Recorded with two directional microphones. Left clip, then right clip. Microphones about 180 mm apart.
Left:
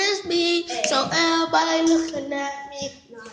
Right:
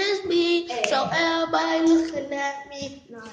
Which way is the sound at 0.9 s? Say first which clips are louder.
Left 2 dB; 15° left (ahead or behind).